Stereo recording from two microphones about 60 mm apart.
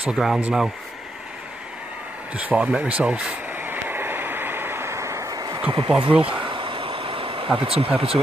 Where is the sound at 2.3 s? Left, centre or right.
Right.